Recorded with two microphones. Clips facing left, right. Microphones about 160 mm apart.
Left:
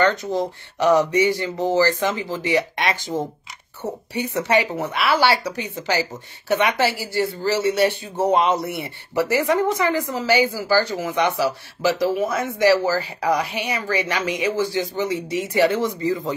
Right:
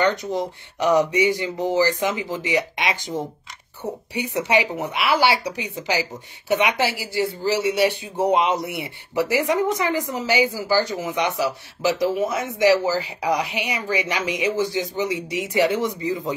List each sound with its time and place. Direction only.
0.0 s speech: 20° right (ahead or behind)
4.1 s speech: 15° right (ahead or behind)